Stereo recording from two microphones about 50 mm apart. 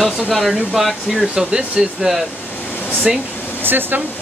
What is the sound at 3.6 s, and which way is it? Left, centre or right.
Speech, right.